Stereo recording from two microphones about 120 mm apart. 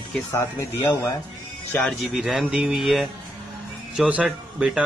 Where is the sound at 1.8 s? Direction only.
Centre (ahead or behind).